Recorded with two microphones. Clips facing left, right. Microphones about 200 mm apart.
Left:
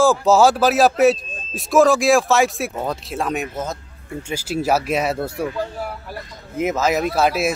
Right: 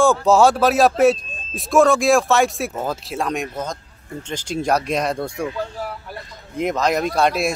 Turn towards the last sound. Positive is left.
turn(degrees=5)  # may be behind; listen again after turning